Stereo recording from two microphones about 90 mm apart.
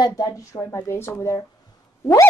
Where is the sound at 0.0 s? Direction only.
40° left (ahead or behind).